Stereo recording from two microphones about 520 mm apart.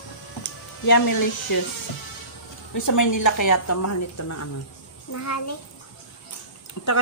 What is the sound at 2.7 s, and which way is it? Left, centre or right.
Speech, left.